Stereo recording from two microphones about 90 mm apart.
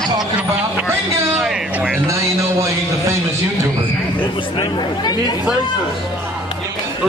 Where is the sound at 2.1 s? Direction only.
35° right (ahead or behind).